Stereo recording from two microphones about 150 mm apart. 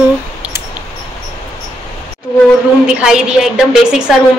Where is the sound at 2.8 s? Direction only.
5° right (ahead or behind).